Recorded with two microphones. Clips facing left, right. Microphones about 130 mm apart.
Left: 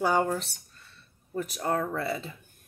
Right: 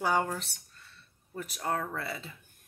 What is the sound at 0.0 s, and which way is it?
Speech, 35° left (ahead or behind).